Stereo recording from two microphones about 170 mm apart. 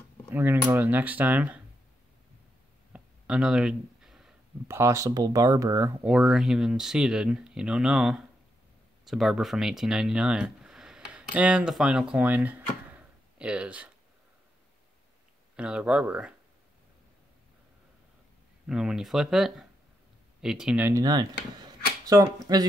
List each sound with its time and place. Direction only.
0.3 s speech: 10° right (ahead or behind)
2.9 s a sound: 5° right (ahead or behind)
4.6 s speech: 15° right (ahead or behind)
6.0 s speech: 5° right (ahead or behind)
15.5 s speech: 5° right (ahead or behind)
18.7 s speech: 5° right (ahead or behind)
21.0 s speech: 25° right (ahead or behind)